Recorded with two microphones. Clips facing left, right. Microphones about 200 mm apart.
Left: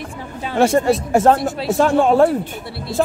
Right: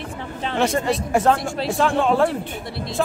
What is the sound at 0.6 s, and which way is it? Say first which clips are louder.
Speech: left 6 dB; 45° left (ahead or behind).